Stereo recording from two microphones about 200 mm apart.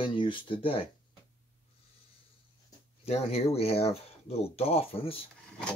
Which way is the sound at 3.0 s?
30° left (ahead or behind).